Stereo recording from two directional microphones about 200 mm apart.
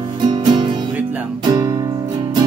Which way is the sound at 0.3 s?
20° right (ahead or behind).